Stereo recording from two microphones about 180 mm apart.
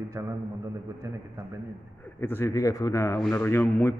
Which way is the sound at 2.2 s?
15° left (ahead or behind).